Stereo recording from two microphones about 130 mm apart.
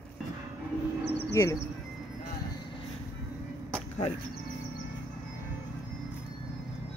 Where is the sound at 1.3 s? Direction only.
20° left (ahead or behind).